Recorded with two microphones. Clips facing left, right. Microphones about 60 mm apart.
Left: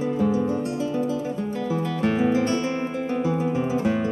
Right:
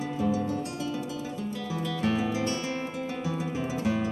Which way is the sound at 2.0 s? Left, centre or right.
Left.